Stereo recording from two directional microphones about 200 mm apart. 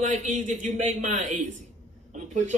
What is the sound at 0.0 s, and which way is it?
Speech, 40° right (ahead or behind).